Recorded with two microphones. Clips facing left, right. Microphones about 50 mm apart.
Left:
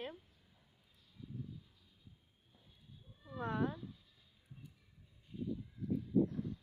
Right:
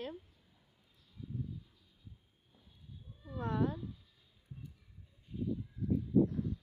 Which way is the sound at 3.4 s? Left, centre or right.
Centre.